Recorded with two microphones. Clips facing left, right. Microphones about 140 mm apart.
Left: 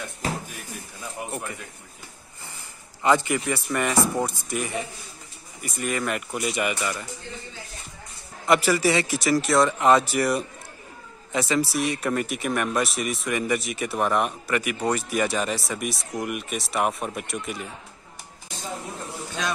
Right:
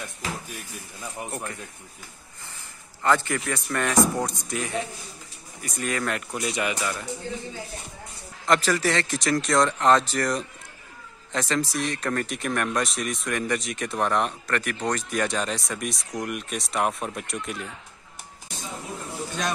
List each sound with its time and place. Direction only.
1.3 s speech: 5° left (ahead or behind)
3.0 s a man's voice: 15° left (ahead or behind)
8.5 s speech: 10° left (ahead or behind)